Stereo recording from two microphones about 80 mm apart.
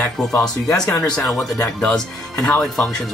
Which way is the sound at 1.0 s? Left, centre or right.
Centre.